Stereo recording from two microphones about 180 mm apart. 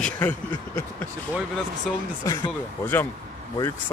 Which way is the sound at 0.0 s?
10° left (ahead or behind).